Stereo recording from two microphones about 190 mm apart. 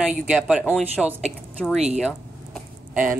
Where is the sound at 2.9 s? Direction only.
10° right (ahead or behind).